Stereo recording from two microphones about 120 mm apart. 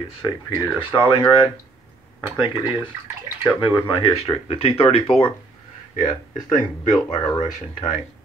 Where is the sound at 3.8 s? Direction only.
45° left (ahead or behind).